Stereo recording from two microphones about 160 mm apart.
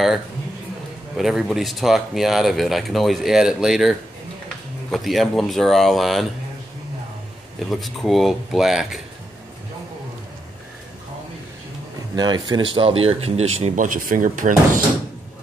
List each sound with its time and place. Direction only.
1.1 s speech: centre (ahead or behind)
4.9 s speech: centre (ahead or behind)
7.5 s speech: centre (ahead or behind)
12.2 s speech: 25° right (ahead or behind); by 14.8 s 55° right (ahead or behind)